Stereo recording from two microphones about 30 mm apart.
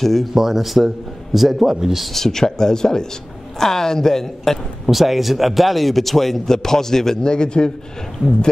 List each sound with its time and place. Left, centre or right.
0.0 s a woman's voice: centre
0.3 s a man's voice: centre
2.1 s a woman's voice: centre
4.8 s speech: centre
7.2 s speech: left